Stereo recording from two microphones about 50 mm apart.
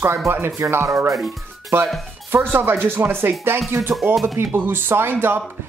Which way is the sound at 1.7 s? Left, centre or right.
Right.